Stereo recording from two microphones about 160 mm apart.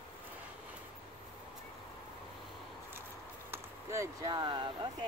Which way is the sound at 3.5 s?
20° right (ahead or behind).